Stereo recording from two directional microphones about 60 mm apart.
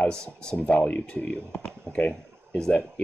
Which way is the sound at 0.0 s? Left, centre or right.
Centre.